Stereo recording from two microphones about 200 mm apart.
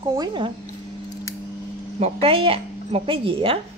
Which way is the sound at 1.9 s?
30° right (ahead or behind).